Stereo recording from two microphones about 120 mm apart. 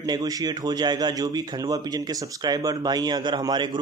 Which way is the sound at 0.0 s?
35° right (ahead or behind).